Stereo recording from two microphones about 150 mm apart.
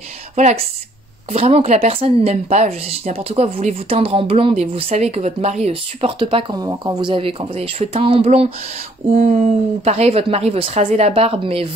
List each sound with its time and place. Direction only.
0.4 s a woman's voice: 50° right (ahead or behind)